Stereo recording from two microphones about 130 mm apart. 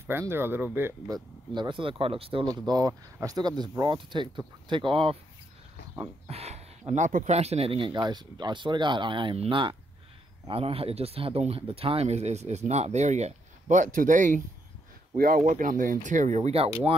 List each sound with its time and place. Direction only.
0.0 s speech: 20° right (ahead or behind)
1.1 s speech: 35° right (ahead or behind)
2.4 s speech: 30° right (ahead or behind)
6.2 s a sound: 55° right (ahead or behind)
6.9 s speech: 80° right
7.3 s speech: 55° right (ahead or behind); by 14.4 s 75° right (ahead or behind)
15.2 s speech: 90° right; by 16.7 s 55° right (ahead or behind)